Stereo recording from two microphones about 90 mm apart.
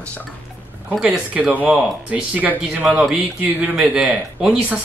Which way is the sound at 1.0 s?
15° right (ahead or behind).